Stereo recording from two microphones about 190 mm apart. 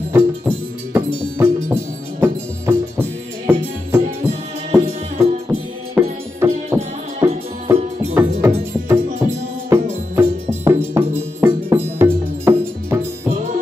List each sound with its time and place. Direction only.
0.1 s music: 15° right (ahead or behind)
5.5 s music: 15° right (ahead or behind)